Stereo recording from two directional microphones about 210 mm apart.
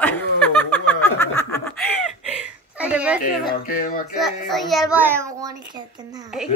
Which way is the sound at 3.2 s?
40° left (ahead or behind).